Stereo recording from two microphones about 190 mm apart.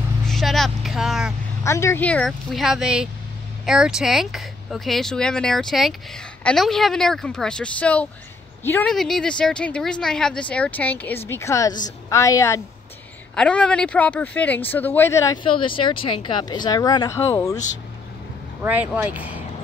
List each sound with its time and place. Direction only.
0.3 s vehicle: centre (ahead or behind)
1.6 s speech: 15° left (ahead or behind)
18.6 s speech: 10° right (ahead or behind)